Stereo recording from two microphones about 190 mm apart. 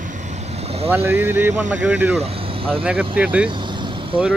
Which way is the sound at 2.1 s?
30° right (ahead or behind).